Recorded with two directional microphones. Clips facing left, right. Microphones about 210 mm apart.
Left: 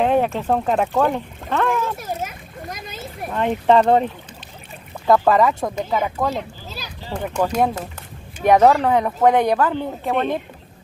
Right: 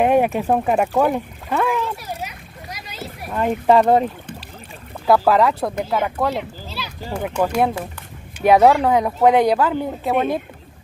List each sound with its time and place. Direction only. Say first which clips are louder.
0.0 s speech: right 2 dB; 10° right (ahead or behind)
2.0 s splash: left 3 dB; 50° left (ahead or behind)
3.3 s speech: right 1 dB; 5° right (ahead or behind)
5.0 s speech: even; 5° right (ahead or behind)